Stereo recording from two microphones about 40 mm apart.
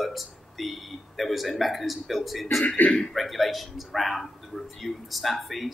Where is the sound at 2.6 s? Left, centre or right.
Left.